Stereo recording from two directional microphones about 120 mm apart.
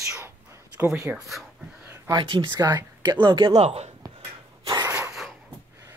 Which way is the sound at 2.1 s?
40° right (ahead or behind).